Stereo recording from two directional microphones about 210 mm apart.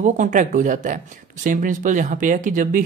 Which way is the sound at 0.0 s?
35° right (ahead or behind).